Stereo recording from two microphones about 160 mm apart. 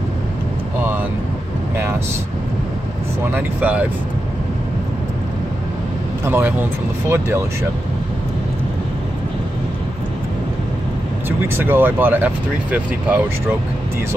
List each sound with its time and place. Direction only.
3.3 s speech: 10° right (ahead or behind)
6.2 s speech: 15° right (ahead or behind)
11.2 s speech: 15° right (ahead or behind)